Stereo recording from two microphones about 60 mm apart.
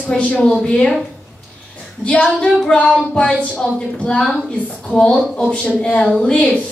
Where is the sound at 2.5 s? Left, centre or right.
Centre.